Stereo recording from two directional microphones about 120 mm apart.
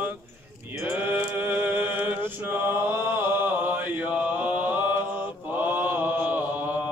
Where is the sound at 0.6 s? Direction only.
20° right (ahead or behind).